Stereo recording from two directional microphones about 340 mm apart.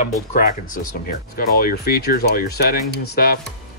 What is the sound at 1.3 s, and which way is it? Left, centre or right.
Speech, left.